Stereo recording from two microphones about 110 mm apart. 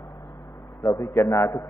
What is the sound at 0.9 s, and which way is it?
Speech, 25° left (ahead or behind).